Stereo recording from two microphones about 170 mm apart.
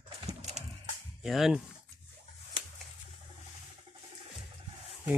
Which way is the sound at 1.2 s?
Centre (ahead or behind).